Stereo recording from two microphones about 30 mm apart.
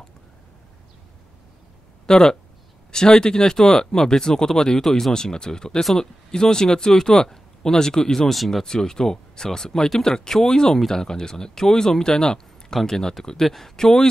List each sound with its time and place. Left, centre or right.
2.0 s speech: left